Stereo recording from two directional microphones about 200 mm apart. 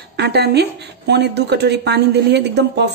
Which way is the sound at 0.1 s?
55° right (ahead or behind).